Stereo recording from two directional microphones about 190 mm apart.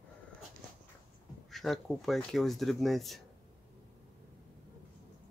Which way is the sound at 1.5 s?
Centre (ahead or behind).